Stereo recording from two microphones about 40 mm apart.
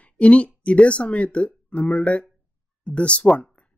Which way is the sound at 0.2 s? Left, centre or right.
Left.